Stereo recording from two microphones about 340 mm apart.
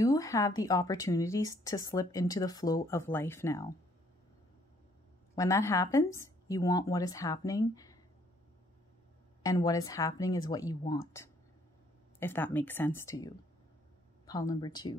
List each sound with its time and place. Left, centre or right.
0.0 s speech: centre
5.3 s speech: centre
9.4 s speech: centre